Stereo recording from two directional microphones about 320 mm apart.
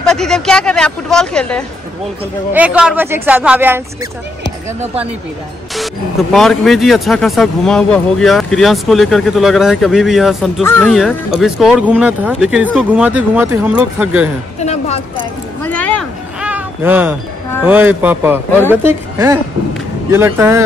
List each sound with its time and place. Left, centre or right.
0.0 s speech: centre
6.3 s speech: centre
14.6 s speech: centre
15.1 s a sound: centre
17.6 s speech: centre